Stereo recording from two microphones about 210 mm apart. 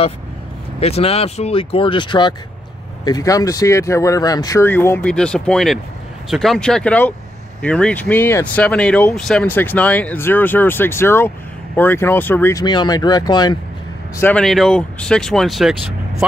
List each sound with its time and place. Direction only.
0.7 s speech: 30° left (ahead or behind)
14.2 s speech: 5° left (ahead or behind)